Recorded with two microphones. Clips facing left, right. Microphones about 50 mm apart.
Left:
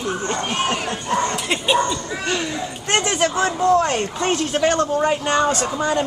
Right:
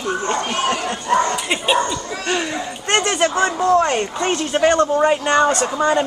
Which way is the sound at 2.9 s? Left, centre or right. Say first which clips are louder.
Right 2 dB; centre.